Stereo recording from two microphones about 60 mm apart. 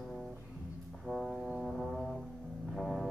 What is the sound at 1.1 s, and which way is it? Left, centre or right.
Music, centre.